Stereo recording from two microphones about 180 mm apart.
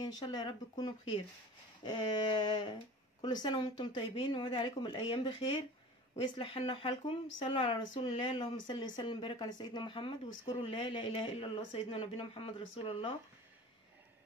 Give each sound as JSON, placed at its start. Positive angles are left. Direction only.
{"t": 0.0, "sound": "speech", "side_deg": 20}